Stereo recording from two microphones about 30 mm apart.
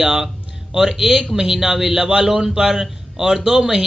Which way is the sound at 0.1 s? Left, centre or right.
Centre.